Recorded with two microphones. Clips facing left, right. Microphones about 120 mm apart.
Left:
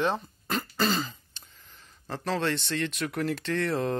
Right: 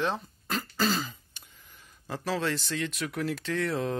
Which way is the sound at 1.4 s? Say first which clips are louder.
Left 1 dB; 10° right (ahead or behind).